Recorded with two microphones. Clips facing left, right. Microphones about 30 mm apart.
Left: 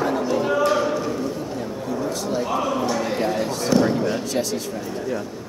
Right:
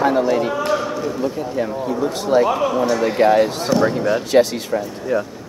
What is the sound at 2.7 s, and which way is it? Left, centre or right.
Speech, centre.